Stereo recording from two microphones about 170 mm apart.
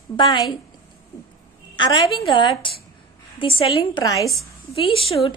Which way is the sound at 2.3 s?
30° left (ahead or behind).